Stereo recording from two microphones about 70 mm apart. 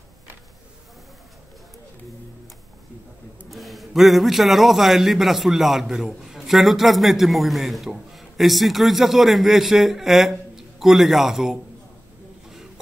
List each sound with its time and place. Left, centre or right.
3.4 s a man's voice: centre